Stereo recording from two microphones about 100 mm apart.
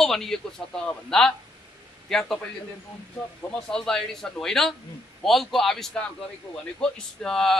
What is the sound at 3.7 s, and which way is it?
A man's voice, 5° left (ahead or behind).